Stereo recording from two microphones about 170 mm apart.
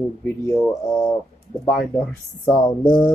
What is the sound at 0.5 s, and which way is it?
Speech, 20° left (ahead or behind).